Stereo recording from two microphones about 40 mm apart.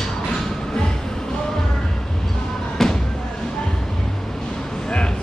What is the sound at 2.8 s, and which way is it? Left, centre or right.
Music, centre.